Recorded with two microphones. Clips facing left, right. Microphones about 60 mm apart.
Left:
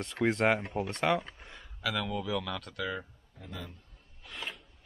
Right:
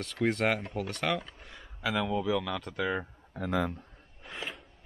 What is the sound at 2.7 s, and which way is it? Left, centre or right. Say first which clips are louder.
Speech: right 6 dB; right.